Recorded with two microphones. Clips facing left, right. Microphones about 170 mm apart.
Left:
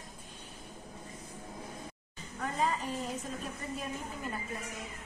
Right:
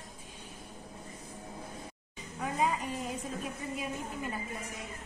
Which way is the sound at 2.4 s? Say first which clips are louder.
Right 1 dB; 10° right (ahead or behind).